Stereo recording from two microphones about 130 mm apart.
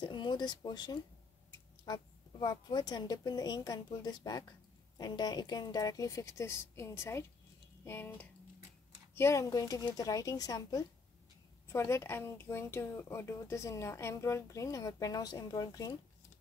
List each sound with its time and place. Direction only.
0.0 s a woman's voice: 35° left (ahead or behind)
2.4 s a woman's voice: 35° left (ahead or behind)